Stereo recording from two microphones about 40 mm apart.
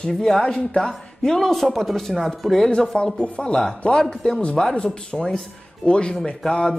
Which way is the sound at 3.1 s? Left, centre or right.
Left.